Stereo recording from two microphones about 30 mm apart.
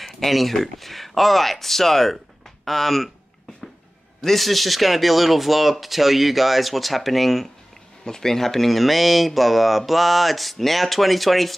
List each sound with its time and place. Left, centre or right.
0.0 s speech: centre
4.2 s speech: centre
8.0 s speech: left; by 11.5 s centre